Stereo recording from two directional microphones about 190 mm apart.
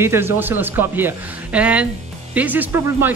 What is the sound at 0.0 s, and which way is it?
Speech, 10° right (ahead or behind).